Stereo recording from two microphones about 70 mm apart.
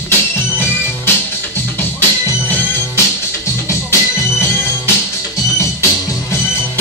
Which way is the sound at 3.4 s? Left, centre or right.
Left.